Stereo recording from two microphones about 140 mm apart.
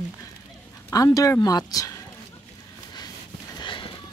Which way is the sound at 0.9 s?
25° left (ahead or behind).